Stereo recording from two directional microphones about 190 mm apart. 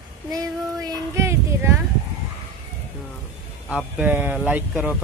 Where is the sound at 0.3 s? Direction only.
20° right (ahead or behind).